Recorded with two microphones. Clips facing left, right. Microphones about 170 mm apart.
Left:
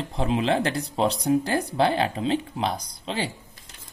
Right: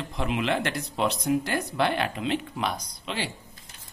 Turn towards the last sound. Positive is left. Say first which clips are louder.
# left 3 dB
turn(degrees=30)  # may be behind; listen again after turning